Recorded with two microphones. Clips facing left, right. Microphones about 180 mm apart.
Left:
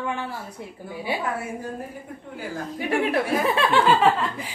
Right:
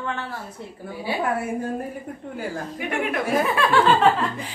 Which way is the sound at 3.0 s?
30° left (ahead or behind).